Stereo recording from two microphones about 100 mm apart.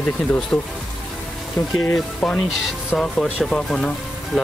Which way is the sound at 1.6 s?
30° left (ahead or behind).